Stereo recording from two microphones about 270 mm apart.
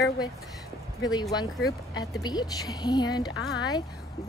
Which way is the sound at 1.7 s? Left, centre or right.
Centre.